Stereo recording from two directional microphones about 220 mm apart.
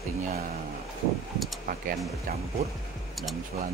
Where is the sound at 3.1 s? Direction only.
Centre (ahead or behind).